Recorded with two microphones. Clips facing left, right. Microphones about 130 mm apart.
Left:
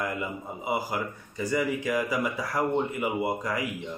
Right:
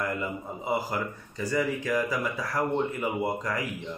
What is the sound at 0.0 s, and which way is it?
Speech, 10° left (ahead or behind).